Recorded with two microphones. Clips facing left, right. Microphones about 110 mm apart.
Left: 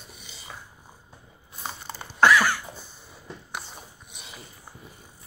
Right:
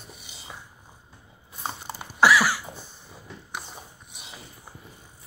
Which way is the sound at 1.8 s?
10° right (ahead or behind).